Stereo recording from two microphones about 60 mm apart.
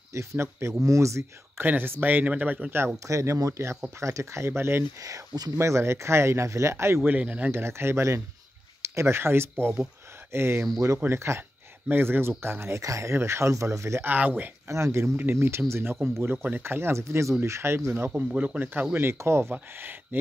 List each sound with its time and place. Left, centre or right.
0.1 s speech: right
1.6 s speech: right
3.1 s speech: right
5.0 s speech: right
5.6 s speech: right
7.1 s speech: right
7.5 s speech: right
11.9 s speech: right
12.8 s speech: right
14.0 s speech: right
14.7 s speech: right
18.1 s speech: right
18.6 s speech: right
19.5 s speech: right